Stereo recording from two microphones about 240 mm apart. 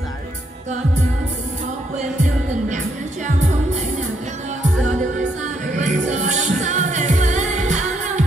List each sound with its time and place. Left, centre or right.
5.8 s music: right